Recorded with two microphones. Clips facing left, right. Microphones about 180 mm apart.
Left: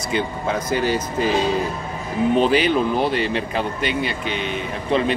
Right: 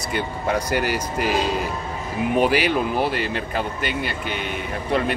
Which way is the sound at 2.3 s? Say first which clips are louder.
Left 1 dB; 10° right (ahead or behind).